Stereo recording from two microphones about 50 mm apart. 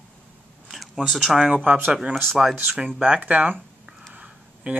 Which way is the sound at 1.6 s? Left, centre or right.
Right.